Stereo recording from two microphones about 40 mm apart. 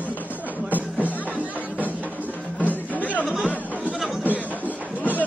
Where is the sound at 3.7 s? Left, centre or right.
Right.